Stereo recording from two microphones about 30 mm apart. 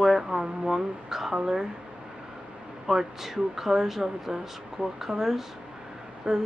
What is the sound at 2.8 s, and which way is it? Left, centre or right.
Speech, centre.